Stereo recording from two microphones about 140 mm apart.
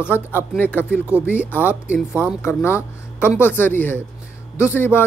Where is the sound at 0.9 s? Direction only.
10° right (ahead or behind).